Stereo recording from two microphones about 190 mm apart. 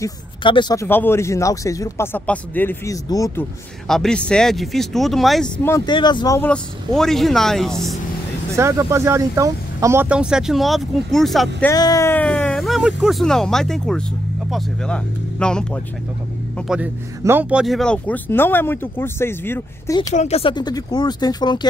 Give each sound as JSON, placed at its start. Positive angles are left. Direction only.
{"t": 0.0, "sound": "speech", "side_deg": 25}
{"t": 0.8, "sound": "speech", "side_deg": 10}
{"t": 3.8, "sound": "speech", "side_deg": 0}
{"t": 5.9, "sound": "speech", "side_deg": 25}
{"t": 6.5, "sound": "speech", "side_deg": 0}
{"t": 8.5, "sound": "speech", "side_deg": -15}
{"t": 11.6, "sound": "speech", "side_deg": 20}
{"t": 20.2, "sound": "speech", "side_deg": 35}